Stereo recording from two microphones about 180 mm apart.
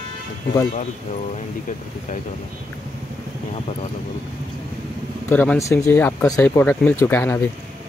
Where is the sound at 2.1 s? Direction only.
45° left (ahead or behind).